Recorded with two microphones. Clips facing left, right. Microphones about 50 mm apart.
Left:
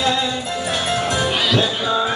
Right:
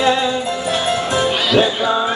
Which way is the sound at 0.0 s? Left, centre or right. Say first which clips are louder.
Right 4 dB; right.